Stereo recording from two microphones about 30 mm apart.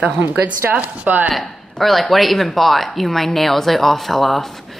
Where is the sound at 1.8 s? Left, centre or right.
Centre.